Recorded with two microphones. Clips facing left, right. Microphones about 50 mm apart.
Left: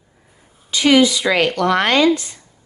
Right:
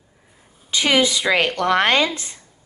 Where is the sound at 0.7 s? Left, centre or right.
Right.